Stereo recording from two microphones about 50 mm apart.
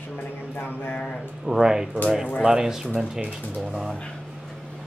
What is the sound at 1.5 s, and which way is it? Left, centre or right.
Speech, centre.